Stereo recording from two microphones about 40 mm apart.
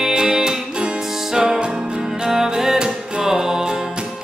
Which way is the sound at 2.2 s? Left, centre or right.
Centre.